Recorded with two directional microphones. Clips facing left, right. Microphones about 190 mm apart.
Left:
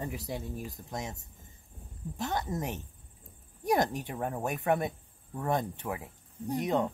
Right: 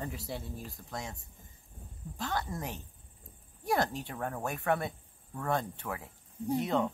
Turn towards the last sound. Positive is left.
turn(degrees=15)  # may be behind; listen again after turning